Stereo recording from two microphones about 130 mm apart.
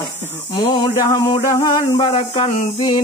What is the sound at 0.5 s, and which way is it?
Speech, 35° left (ahead or behind).